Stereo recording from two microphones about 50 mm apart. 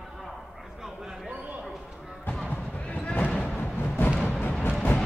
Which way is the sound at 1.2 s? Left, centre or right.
Right.